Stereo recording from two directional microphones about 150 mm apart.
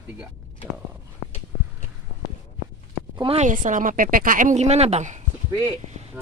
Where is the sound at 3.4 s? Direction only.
60° right (ahead or behind).